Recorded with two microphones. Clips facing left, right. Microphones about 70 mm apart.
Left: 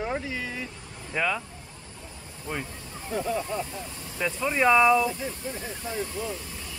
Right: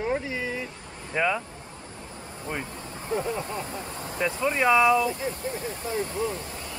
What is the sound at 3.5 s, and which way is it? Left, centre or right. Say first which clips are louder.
Speech: left 1 dB; right.